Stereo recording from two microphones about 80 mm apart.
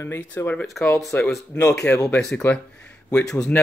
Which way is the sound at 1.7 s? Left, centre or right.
Centre.